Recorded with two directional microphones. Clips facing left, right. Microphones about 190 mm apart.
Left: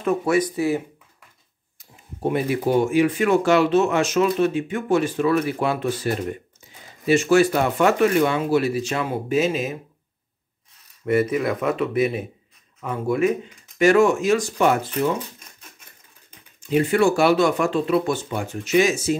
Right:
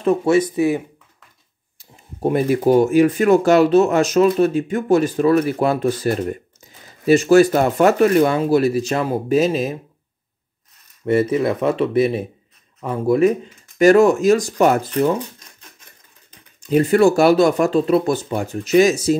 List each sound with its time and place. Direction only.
0.0 s speech: 30° right (ahead or behind)
1.8 s speech: 40° right (ahead or behind)
11.1 s speech: 30° right (ahead or behind)
16.6 s speech: 40° right (ahead or behind)